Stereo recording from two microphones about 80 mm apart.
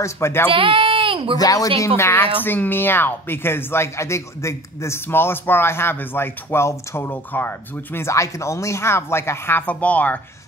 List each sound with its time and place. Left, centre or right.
0.0 s speech: left
0.5 s speech: right
1.4 s speech: left
2.0 s speech: left